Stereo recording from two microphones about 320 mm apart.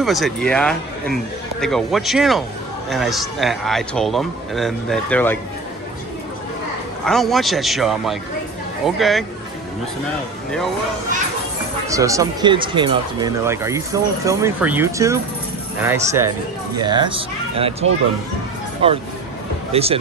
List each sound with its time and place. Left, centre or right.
0.0 s a man's voice: centre
7.1 s a man's voice: centre
11.9 s speech: centre
19.7 s speech: centre